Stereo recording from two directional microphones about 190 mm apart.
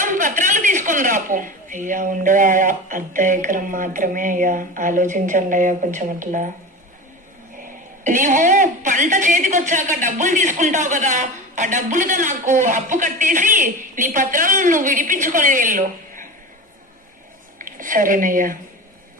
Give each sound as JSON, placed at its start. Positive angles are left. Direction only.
{"t": 0.0, "sound": "a woman's voice", "side_deg": -45}
{"t": 8.0, "sound": "a woman's voice", "side_deg": -40}
{"t": 17.6, "sound": "speech", "side_deg": -45}